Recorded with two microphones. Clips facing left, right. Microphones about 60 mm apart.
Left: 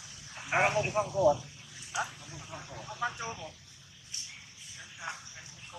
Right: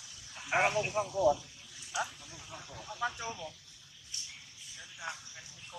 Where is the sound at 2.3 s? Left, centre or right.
Left.